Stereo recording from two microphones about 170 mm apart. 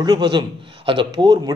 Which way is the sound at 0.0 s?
25° right (ahead or behind).